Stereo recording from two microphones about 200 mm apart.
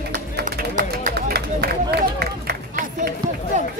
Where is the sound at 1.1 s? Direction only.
55° right (ahead or behind).